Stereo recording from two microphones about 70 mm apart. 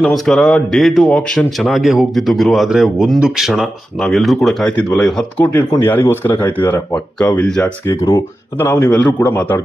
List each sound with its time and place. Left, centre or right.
0.0 s speech: centre
1.0 s speech: centre
1.7 s speech: centre
5.4 s speech: left
7.2 s speech: centre
7.8 s speech: left
8.5 s a man's voice: left
8.9 s speech: left